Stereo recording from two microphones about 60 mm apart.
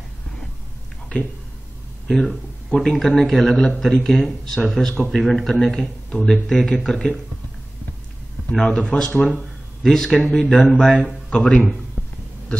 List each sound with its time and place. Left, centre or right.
1.1 s speech: left
2.0 s a man's voice: centre
8.5 s a man's voice: centre
10.8 s speech: centre
11.2 s a man's voice: centre